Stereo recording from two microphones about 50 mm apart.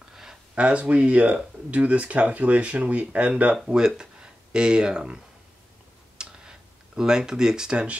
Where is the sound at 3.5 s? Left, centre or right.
Centre.